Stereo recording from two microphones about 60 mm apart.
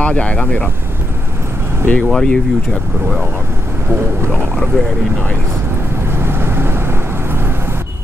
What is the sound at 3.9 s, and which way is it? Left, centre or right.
Speech, right.